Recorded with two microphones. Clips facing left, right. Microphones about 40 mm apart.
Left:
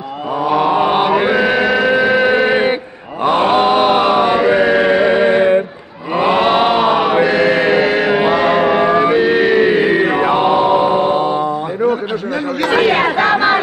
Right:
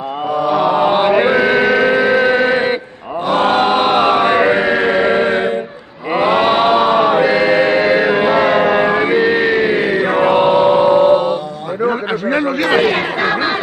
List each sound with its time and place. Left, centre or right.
0.5 s chant: centre
3.4 s music: centre
4.3 s chant: right
4.9 s music: centre
6.1 s chant: centre
8.4 s music: centre
10.2 s mantra: centre
12.8 s chatter: centre